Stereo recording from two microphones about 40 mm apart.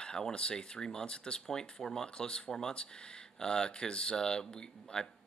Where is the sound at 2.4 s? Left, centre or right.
Centre.